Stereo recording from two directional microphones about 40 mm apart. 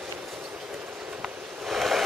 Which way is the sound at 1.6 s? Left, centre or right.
Centre.